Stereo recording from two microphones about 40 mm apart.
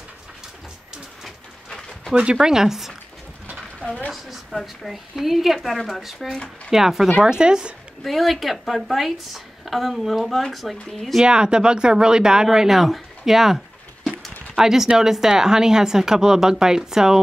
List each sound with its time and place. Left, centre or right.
1.7 s bird: centre
2.3 s speech: centre
4.1 s a woman's voice: centre; by 7.7 s right
8.0 s a woman's voice: centre
11.2 s speech: right
14.6 s speech: centre